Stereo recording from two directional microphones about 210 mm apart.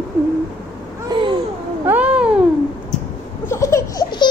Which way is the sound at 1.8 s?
5° right (ahead or behind).